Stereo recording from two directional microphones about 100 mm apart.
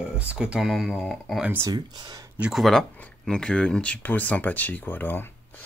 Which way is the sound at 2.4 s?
Centre (ahead or behind).